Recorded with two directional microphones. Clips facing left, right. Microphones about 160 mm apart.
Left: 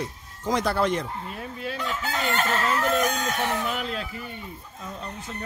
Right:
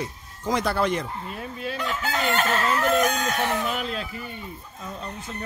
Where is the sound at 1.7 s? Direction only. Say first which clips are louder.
Right 2 dB; 85° right.